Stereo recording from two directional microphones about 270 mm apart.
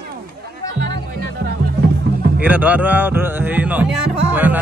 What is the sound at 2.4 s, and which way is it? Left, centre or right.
Speech, centre.